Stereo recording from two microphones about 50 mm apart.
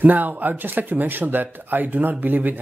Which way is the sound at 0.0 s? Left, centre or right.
Right.